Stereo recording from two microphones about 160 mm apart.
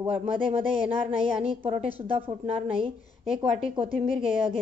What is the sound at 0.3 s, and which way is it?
A woman's voice, 35° right (ahead or behind).